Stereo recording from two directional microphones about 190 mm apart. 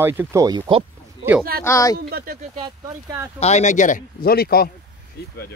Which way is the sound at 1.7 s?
15° left (ahead or behind).